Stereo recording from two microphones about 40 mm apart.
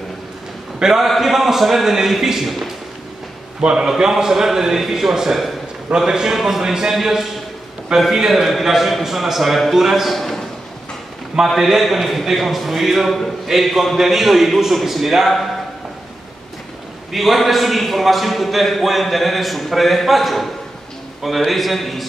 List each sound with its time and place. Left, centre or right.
0.9 s a man's voice: centre
3.7 s a man's voice: centre
6.3 s a man's voice: centre
6.6 s a man's voice: centre
11.4 s a man's voice: centre
17.1 s a man's voice: centre